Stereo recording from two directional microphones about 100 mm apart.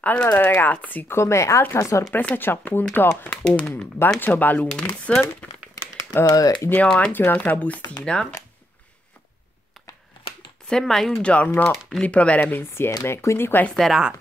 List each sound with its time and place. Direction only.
0.0 s speech: 15° left (ahead or behind)
2.1 s speech: 20° left (ahead or behind)
6.2 s speech: 35° left (ahead or behind)
6.9 s speech: 15° left (ahead or behind)
9.8 s computer keyboard: centre (ahead or behind)
10.7 s speech: 5° left (ahead or behind)
11.2 s speech: 15° left (ahead or behind)
11.7 s speech: centre (ahead or behind)
12.0 s speech: 15° left (ahead or behind)
13.7 s speech: centre (ahead or behind)